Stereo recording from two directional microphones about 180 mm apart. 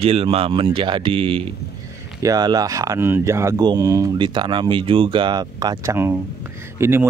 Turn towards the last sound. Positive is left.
turn(degrees=-15)  # may be behind; listen again after turning